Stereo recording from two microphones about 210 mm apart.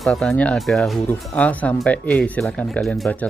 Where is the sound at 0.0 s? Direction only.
5° left (ahead or behind).